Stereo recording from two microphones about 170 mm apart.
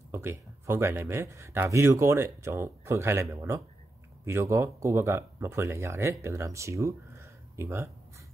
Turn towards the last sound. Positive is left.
turn(degrees=-15)  # may be behind; listen again after turning